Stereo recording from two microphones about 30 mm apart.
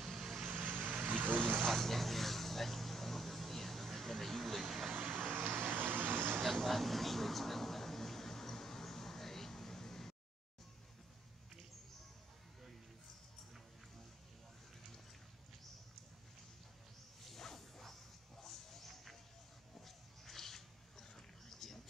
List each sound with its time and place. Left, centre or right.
0.0 s vehicle: centre
0.5 s vehicle: right
1.1 s vehicle: right
1.8 s vehicle: centre
4.6 s vehicle: centre
4.9 s vehicle: right
5.6 s vehicle: right
6.6 s a sound: centre
17.3 s whoosh: centre
18.4 s a sound: centre